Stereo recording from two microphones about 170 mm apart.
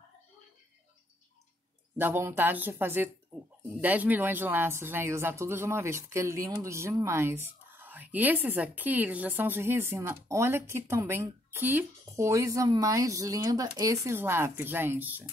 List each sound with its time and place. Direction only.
2.0 s speech: 15° right (ahead or behind)